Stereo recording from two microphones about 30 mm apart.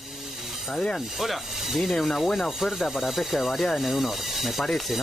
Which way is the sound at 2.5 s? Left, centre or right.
Centre.